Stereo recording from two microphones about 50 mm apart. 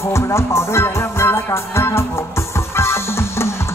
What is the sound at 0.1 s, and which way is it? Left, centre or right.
Music, left.